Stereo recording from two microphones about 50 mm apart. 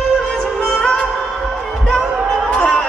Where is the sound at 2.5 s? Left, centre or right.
Centre.